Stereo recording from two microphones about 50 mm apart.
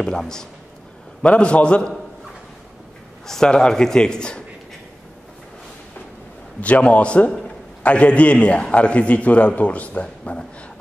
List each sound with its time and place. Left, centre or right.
0.0 s a man's voice: centre
1.2 s a man's voice: left
3.3 s a man's voice: centre
6.6 s a man's voice: left